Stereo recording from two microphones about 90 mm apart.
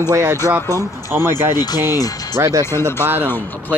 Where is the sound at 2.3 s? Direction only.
35° right (ahead or behind).